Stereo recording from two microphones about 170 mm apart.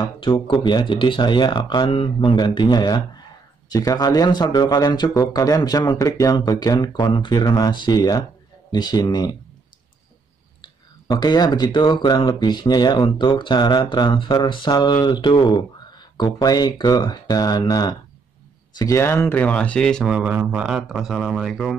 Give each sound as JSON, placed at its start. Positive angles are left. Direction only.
{"t": 0.0, "sound": "speech", "side_deg": 30}
{"t": 10.6, "sound": "speech", "side_deg": 25}